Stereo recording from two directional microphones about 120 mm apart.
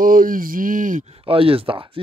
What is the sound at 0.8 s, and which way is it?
Speech, 90° right.